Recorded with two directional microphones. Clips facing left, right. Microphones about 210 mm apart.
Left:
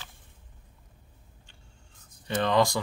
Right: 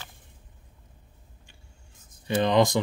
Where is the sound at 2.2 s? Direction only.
15° right (ahead or behind).